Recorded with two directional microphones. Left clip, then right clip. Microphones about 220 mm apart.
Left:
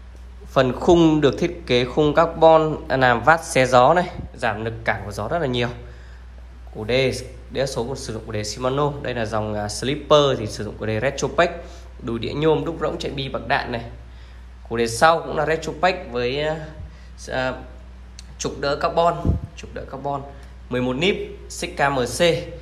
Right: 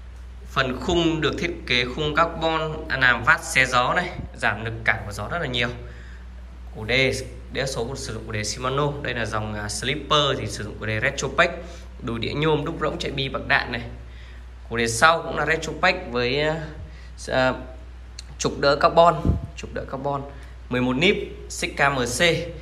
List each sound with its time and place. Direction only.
0.5 s a man's voice: 25° left (ahead or behind)
6.9 s a man's voice: 25° left (ahead or behind)